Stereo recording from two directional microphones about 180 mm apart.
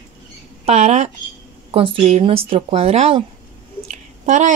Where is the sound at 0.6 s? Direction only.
40° right (ahead or behind).